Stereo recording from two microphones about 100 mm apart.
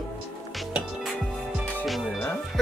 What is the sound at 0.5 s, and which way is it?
Music, centre (ahead or behind).